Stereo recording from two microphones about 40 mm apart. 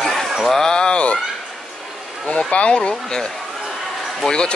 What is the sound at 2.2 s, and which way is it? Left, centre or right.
Speech, left.